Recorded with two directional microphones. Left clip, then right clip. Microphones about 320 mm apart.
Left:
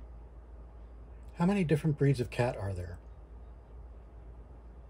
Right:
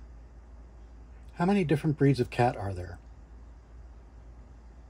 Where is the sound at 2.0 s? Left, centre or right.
Centre.